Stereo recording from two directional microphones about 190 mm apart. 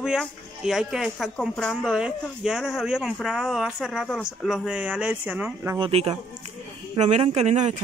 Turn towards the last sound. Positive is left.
turn(degrees=-35)  # may be behind; listen again after turning